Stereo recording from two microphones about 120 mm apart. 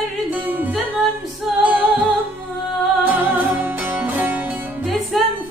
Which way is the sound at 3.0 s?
15° right (ahead or behind).